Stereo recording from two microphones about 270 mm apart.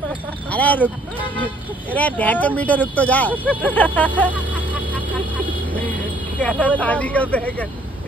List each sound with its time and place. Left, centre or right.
0.5 s speech: centre
2.0 s speech: centre
6.4 s speech: centre